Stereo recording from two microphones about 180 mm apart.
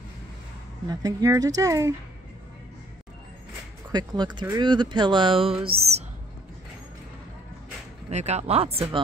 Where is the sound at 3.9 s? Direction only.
25° right (ahead or behind).